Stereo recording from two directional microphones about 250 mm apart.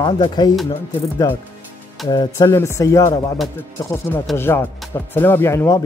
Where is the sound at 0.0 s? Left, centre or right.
Centre.